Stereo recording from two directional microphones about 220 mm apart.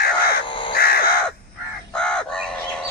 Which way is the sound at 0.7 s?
45° left (ahead or behind).